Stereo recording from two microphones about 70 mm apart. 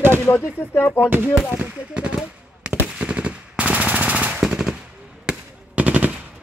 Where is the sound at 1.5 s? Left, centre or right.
Right.